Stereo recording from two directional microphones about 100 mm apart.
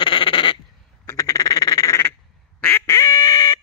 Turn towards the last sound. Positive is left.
turn(degrees=40)  # may be behind; listen again after turning